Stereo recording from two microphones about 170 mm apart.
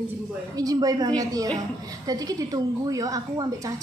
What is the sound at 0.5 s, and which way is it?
A woman's voice, 20° right (ahead or behind).